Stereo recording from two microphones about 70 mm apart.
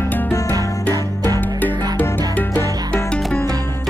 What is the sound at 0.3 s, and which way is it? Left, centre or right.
Music, left.